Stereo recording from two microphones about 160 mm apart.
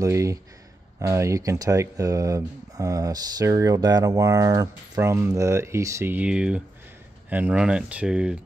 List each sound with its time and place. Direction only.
0.0 s speech: 20° right (ahead or behind)